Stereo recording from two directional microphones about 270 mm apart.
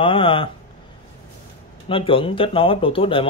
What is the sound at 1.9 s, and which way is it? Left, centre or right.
Speech, centre.